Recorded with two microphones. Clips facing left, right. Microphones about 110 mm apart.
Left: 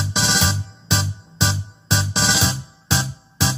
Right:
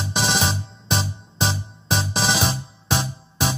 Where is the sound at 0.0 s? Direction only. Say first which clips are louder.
Even; 50° right (ahead or behind).